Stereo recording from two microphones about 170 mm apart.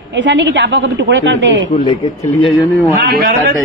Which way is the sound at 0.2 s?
90° right.